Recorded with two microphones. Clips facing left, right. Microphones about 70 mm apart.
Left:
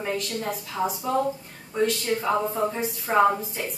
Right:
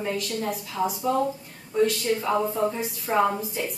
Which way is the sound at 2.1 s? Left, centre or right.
Centre.